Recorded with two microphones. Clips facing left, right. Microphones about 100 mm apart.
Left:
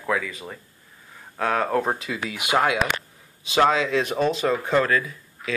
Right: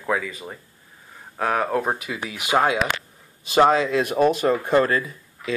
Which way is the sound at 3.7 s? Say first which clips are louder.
Right 2 dB; 45° right (ahead or behind).